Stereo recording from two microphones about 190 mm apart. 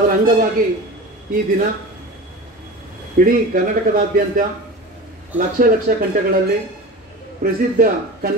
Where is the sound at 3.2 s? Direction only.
50° right (ahead or behind).